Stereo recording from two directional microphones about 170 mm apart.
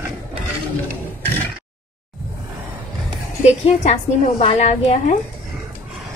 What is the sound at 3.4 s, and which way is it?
A woman's voice, 40° left (ahead or behind).